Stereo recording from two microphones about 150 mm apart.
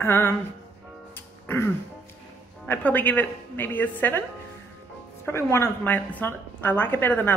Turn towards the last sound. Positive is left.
turn(degrees=10)  # may be behind; listen again after turning